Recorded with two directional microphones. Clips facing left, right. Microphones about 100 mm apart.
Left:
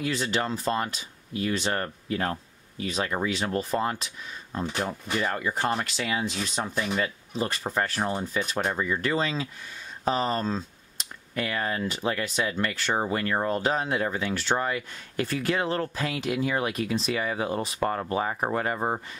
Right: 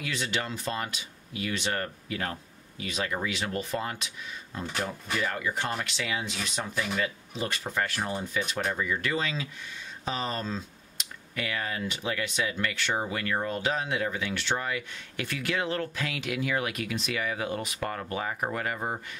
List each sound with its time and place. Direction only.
0.0 s speech: 35° left (ahead or behind)